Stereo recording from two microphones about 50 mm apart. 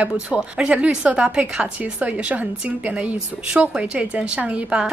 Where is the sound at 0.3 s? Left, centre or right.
Right.